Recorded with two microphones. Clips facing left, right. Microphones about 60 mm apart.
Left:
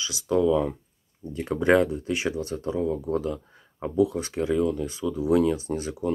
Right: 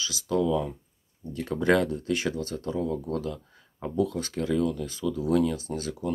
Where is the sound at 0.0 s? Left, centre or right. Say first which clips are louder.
Left 3 dB; left.